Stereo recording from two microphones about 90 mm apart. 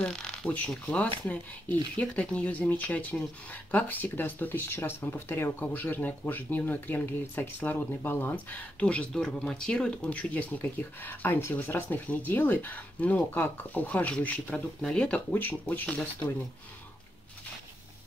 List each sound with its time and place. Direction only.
0.0 s speech: 10° left (ahead or behind)